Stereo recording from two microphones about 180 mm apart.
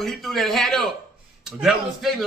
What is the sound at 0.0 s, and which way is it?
A man's voice, centre (ahead or behind).